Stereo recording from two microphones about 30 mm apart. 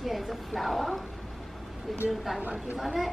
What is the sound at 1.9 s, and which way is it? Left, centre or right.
A woman's voice, centre.